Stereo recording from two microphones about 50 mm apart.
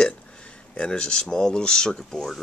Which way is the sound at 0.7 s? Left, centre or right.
Centre.